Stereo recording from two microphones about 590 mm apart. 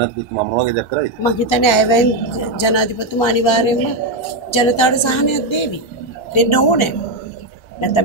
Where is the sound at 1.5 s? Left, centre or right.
Left.